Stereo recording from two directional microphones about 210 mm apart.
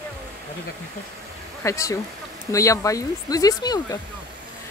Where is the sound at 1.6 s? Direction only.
15° left (ahead or behind).